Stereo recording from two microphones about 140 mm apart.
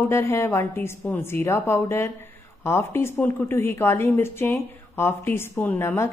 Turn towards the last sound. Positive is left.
turn(degrees=15)  # may be behind; listen again after turning